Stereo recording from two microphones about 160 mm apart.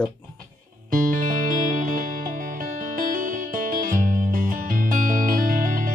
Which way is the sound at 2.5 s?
60° right (ahead or behind).